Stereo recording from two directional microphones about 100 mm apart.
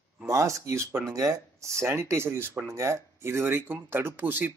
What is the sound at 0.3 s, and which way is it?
Speech, 30° right (ahead or behind).